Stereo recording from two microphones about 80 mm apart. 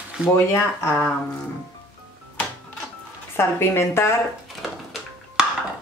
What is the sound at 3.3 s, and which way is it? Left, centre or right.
Speech, left.